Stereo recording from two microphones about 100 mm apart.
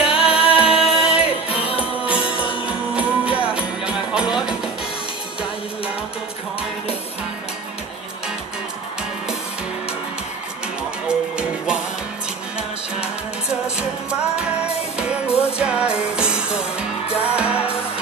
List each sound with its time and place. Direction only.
0.0 s music: 10° right (ahead or behind)
1.5 s music: 70° left (ahead or behind)
2.0 s music: 10° right (ahead or behind)
10.8 s music: 10° right (ahead or behind)
15.5 s music: 10° right (ahead or behind)